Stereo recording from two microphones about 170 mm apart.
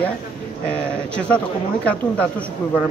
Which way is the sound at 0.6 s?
5° left (ahead or behind).